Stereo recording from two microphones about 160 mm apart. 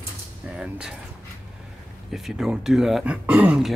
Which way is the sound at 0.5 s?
5° right (ahead or behind).